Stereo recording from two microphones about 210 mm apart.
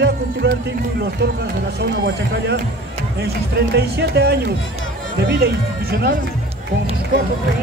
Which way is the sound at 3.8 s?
50° right (ahead or behind).